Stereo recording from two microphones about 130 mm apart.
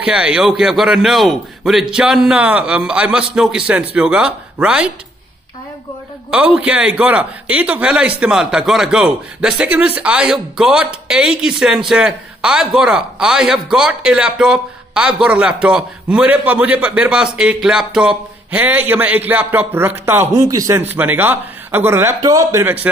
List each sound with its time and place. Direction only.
0.0 s a man's voice: 10° right (ahead or behind)
6.3 s speech: 10° right (ahead or behind); by 20.8 s 25° right (ahead or behind)
20.8 s a man's voice: 15° right (ahead or behind)